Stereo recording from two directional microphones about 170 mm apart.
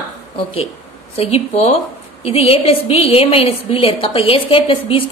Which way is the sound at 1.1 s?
35° left (ahead or behind).